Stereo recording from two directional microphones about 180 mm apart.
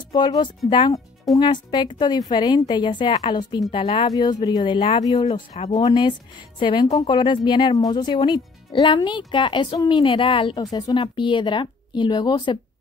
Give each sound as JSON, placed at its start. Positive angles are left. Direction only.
{"t": 0.1, "sound": "a woman's voice", "side_deg": 25}
{"t": 5.5, "sound": "speech", "side_deg": 35}
{"t": 5.8, "sound": "a woman's voice", "side_deg": 20}